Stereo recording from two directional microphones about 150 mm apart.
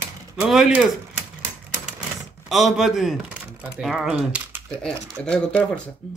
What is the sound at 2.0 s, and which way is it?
Typewriter, centre (ahead or behind).